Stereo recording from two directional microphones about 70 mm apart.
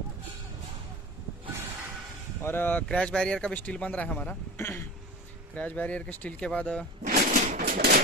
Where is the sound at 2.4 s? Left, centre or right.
Left.